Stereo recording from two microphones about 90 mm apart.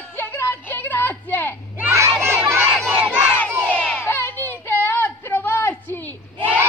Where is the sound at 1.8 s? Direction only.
30° right (ahead or behind).